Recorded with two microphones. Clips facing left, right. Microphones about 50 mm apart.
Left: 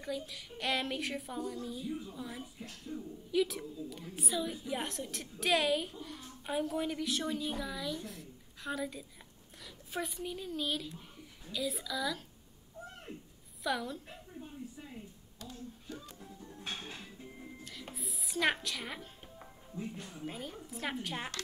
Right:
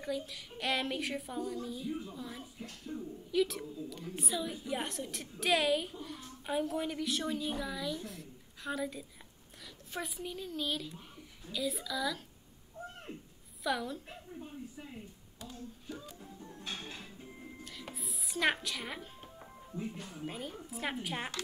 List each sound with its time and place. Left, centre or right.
0.0 s a woman's voice: centre
2.9 s speech: right
3.3 s a woman's voice: centre
13.7 s a woman's voice: centre
15.4 s music: centre
16.7 s music: left
17.2 s music: centre
17.9 s a woman's voice: centre